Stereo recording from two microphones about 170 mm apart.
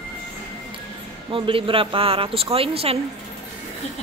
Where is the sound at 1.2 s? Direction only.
30° right (ahead or behind).